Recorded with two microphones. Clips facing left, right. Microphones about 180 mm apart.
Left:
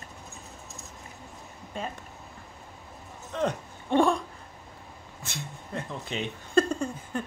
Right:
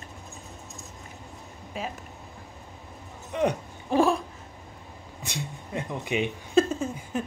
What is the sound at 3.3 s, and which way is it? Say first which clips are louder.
Speech: right 3 dB; 15° right (ahead or behind).